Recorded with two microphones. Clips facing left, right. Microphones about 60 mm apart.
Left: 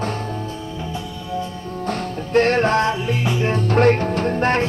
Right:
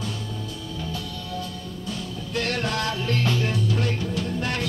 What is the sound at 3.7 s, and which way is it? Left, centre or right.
Music, left.